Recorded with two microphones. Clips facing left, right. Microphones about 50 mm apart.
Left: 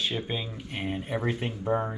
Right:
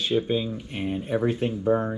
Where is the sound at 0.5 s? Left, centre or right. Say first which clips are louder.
Right 3 dB; left.